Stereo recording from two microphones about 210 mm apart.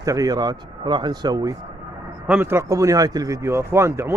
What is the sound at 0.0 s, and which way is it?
Speech, 15° right (ahead or behind).